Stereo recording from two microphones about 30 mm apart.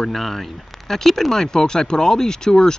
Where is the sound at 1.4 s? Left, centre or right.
Left.